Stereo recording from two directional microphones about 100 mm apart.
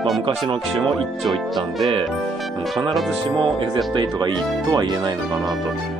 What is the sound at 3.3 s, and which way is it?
Speech, 50° right (ahead or behind).